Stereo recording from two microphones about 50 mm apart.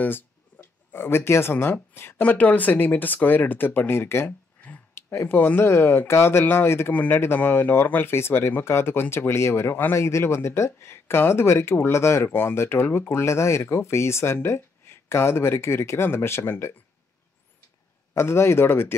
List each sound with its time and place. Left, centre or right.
0.0 s speech: left
2.2 s speech: left
6.9 s speech: left
7.3 s speech: left
9.9 s speech: left
12.3 s speech: left
13.1 s speech: left
18.1 s speech: left